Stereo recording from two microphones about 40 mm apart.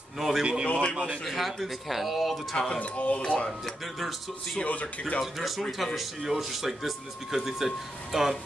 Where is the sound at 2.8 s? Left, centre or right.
Left.